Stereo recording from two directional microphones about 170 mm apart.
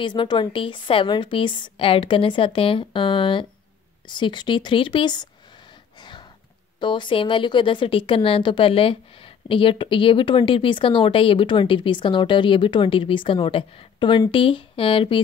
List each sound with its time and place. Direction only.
0.0 s a woman's voice: 25° left (ahead or behind)
5.9 s a sound: 25° left (ahead or behind)
6.8 s a woman's voice: 30° left (ahead or behind)